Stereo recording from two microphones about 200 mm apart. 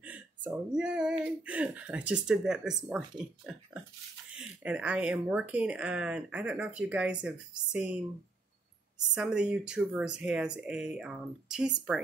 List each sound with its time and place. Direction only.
0.0 s a sound: 5° right (ahead or behind)
1.2 s speech: 5° right (ahead or behind)
9.1 s speech: 5° right (ahead or behind)